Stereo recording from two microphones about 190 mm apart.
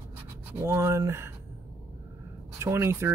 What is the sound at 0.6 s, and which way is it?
Speech, 15° right (ahead or behind).